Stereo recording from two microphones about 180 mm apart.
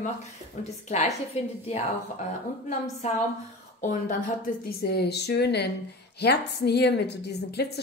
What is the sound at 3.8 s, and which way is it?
A woman's voice, 45° left (ahead or behind).